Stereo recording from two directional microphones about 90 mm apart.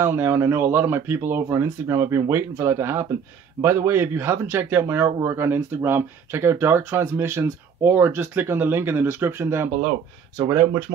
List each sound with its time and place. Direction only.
0.0 s speech: 30° right (ahead or behind)